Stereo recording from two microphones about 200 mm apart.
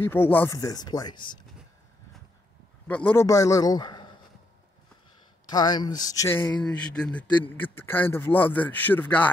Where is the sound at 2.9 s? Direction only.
5° left (ahead or behind).